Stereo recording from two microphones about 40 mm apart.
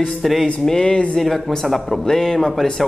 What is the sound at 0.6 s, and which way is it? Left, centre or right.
Speech, centre.